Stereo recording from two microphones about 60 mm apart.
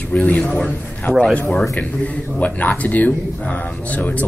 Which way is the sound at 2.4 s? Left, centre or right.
Left.